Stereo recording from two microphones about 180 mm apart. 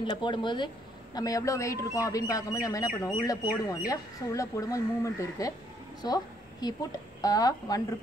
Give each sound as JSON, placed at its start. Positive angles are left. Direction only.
{"t": 0.0, "sound": "a woman's voice", "side_deg": 25}